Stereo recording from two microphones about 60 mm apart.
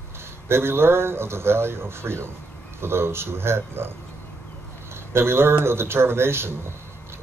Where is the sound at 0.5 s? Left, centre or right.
Right.